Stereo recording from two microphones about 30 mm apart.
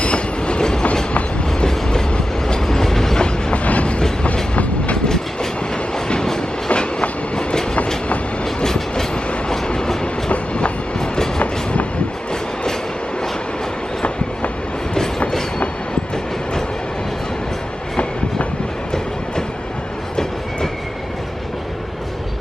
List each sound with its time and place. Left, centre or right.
0.0 s train: left; by 3.2 s centre
3.2 s train: left
3.5 s train: left
5.0 s train: centre
6.7 s train: left
8.6 s train: centre
10.3 s train: left
15.0 s train: centre